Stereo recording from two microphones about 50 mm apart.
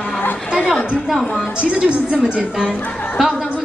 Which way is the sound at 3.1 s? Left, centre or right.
Centre.